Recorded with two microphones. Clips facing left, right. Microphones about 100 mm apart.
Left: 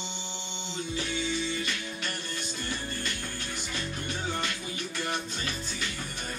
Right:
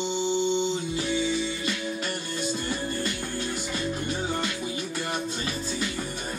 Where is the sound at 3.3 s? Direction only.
40° right (ahead or behind).